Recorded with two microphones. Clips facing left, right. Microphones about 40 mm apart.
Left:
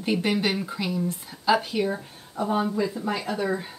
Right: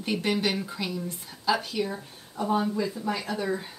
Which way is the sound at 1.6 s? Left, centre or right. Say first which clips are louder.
Left 4 dB; left.